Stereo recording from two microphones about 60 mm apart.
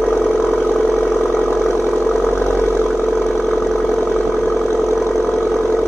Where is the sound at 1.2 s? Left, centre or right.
Left.